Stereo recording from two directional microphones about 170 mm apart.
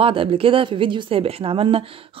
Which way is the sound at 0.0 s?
30° right (ahead or behind).